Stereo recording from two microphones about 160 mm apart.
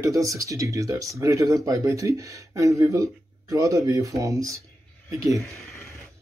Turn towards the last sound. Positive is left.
turn(degrees=-20)  # may be behind; listen again after turning